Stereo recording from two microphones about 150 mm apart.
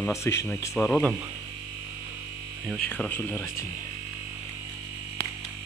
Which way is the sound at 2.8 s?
10° left (ahead or behind).